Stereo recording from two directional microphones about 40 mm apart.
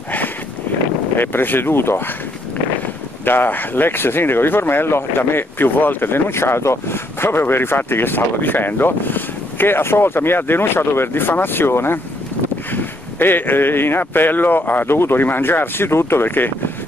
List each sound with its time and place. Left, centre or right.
1.1 s speech: left
3.3 s speech: left
12.7 s speech: left
14.9 s speech: left